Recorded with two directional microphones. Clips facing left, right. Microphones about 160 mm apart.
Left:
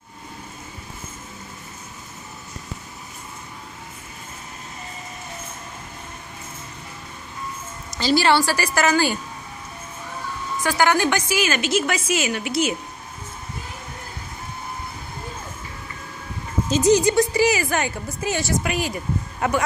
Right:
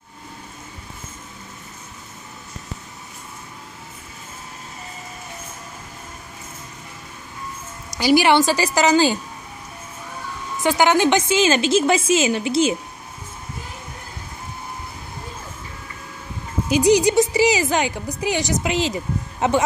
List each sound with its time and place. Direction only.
7.9 s speech: 15° right (ahead or behind)
10.6 s a woman's voice: 20° right (ahead or behind)
16.6 s speech: 15° right (ahead or behind)